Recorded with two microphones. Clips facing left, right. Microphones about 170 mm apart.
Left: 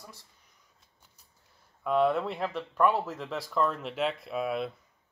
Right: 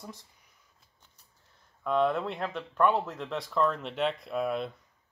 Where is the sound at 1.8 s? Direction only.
5° left (ahead or behind).